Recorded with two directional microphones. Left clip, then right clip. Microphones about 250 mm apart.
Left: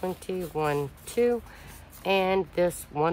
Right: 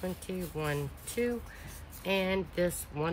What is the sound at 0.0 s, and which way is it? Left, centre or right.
Speech, left.